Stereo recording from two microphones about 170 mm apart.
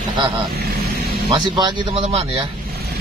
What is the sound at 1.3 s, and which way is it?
Speech, 25° right (ahead or behind).